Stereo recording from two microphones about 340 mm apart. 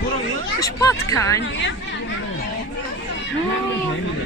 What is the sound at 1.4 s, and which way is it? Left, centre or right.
Speech, left.